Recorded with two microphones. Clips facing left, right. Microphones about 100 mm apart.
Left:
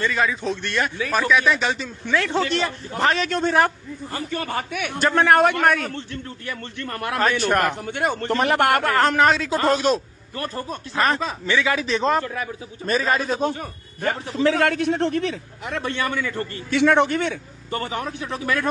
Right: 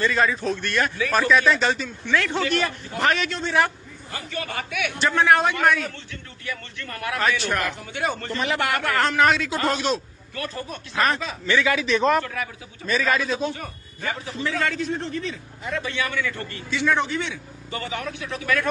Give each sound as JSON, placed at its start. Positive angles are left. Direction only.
{"t": 0.0, "sound": "a man's voice", "side_deg": 5}
{"t": 0.4, "sound": "a man's voice", "side_deg": 20}
{"t": 1.1, "sound": "speech", "side_deg": 10}
{"t": 2.1, "sound": "a man's voice", "side_deg": 30}
{"t": 3.3, "sound": "a man's voice", "side_deg": 45}
{"t": 8.8, "sound": "a man's voice", "side_deg": 35}
{"t": 12.8, "sound": "a man's voice", "side_deg": 70}
{"t": 13.2, "sound": "a man's voice", "side_deg": 45}
{"t": 14.0, "sound": "a man's voice", "side_deg": 65}
{"t": 16.7, "sound": "a man's voice", "side_deg": 65}
{"t": 17.2, "sound": "a man's voice", "side_deg": 45}